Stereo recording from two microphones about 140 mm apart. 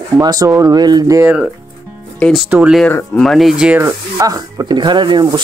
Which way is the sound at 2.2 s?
Centre (ahead or behind).